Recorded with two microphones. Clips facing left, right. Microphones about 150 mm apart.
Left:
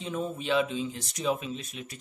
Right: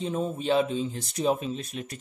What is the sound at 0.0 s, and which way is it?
Speech, 35° right (ahead or behind).